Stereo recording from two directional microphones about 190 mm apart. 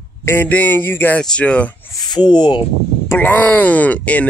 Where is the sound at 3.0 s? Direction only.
10° left (ahead or behind).